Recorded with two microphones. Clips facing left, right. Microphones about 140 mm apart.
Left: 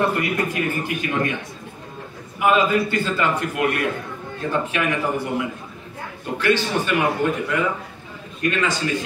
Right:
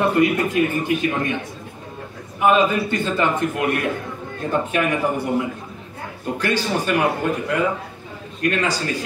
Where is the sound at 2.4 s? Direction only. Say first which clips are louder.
Right 1 dB; 20° right (ahead or behind).